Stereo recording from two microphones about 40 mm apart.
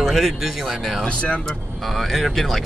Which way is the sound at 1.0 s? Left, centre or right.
Left.